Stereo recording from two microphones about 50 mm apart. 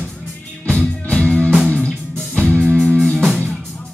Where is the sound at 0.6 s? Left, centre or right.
Left.